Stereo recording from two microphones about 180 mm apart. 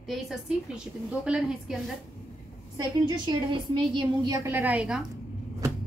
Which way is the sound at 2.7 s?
25° right (ahead or behind).